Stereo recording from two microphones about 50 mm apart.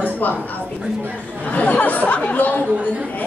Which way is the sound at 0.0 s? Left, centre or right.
Left.